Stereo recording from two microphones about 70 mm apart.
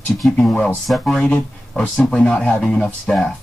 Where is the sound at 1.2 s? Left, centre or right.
Left.